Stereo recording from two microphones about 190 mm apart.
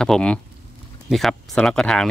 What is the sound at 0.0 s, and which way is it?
Speech, 5° left (ahead or behind).